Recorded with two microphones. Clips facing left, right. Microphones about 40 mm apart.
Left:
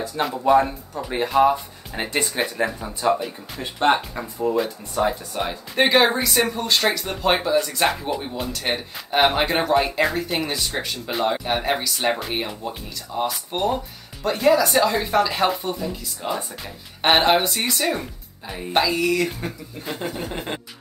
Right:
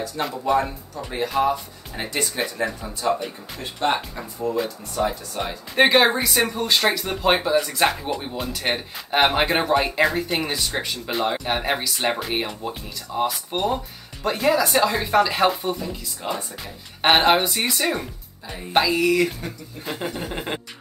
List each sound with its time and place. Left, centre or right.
0.2 s speech: centre
1.4 s speech: centre
3.8 s speech: left
5.8 s speech: centre